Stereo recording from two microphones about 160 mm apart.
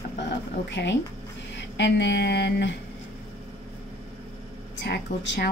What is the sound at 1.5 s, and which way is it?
Speech, 90° left.